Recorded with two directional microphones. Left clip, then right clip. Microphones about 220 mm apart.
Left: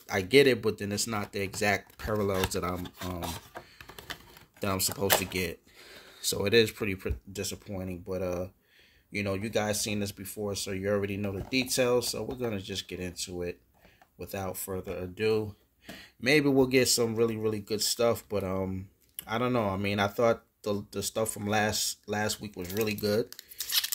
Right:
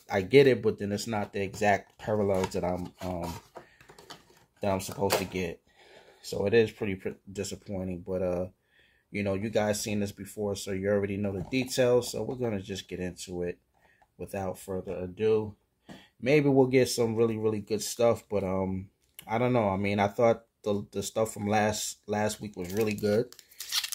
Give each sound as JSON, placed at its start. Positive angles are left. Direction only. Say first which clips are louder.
{"t": 0.0, "sound": "speech", "louder": "right 1 dB", "side_deg": 5}
{"t": 3.0, "sound": "speech", "louder": "right 1 dB", "side_deg": 25}
{"t": 4.6, "sound": "speech", "louder": "right 1 dB", "side_deg": 10}